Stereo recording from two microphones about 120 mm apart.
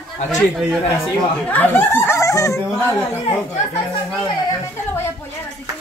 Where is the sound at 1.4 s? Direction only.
15° left (ahead or behind).